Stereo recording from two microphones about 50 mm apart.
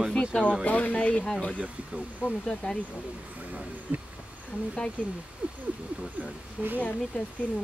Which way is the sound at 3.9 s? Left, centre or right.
Right.